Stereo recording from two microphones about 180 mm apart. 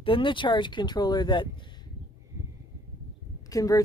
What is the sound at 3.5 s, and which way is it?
Speech, 20° left (ahead or behind).